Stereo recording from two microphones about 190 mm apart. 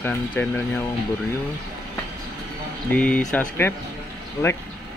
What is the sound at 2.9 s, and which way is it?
Speech, 5° left (ahead or behind).